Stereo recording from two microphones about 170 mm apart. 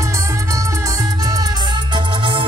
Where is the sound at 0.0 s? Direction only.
20° right (ahead or behind).